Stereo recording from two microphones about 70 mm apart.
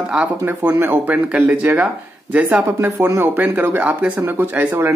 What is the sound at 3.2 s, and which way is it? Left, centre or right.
Speech, right.